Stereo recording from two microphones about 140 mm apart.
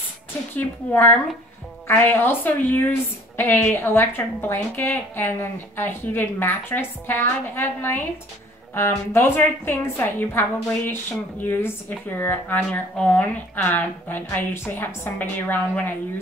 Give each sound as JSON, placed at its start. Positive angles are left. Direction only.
{"t": 0.6, "sound": "a woman's voice", "side_deg": 15}